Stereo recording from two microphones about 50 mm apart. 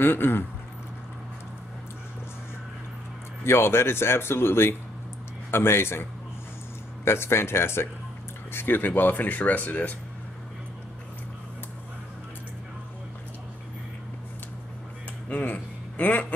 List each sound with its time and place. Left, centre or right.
0.0 s speech: left
3.4 s speech: left
7.1 s speech: left
8.5 s speech: left
15.2 s a sound: left